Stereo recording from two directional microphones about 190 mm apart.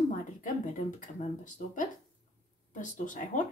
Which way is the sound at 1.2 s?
40° left (ahead or behind).